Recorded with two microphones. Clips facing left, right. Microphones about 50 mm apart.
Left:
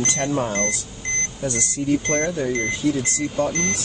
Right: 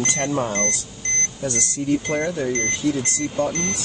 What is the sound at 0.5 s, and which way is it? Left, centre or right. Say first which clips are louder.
Speech: even; centre.